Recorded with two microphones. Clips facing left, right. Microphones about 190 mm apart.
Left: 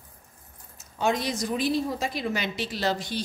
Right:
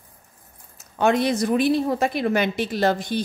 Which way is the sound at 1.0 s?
60° right (ahead or behind).